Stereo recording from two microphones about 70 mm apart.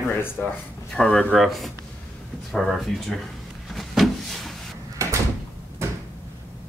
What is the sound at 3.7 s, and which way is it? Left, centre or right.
Vehicle, centre.